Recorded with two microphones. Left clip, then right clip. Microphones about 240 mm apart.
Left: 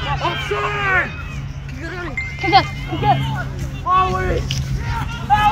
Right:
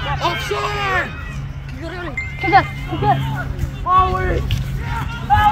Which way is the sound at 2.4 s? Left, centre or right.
Centre.